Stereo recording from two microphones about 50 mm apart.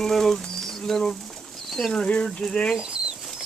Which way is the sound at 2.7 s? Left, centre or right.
Centre.